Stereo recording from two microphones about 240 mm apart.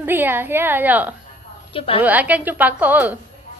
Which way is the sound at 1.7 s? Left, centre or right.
Left.